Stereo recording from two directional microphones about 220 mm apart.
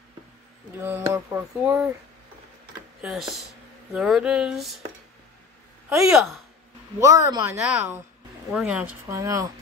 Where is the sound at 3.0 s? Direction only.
Centre (ahead or behind).